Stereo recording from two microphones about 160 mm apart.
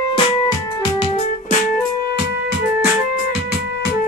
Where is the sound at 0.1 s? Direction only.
30° left (ahead or behind).